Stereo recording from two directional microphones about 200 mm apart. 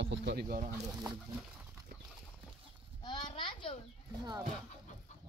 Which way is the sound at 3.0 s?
20° left (ahead or behind).